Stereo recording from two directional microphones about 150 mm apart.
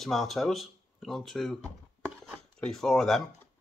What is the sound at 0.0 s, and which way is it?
Speech, centre (ahead or behind).